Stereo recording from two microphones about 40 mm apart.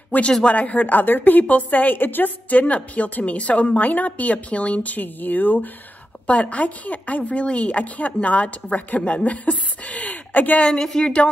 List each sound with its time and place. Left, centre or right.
0.1 s a woman's voice: left
2.6 s a woman's voice: left
6.2 s a woman's voice: left
10.3 s a woman's voice: left
10.6 s speech: centre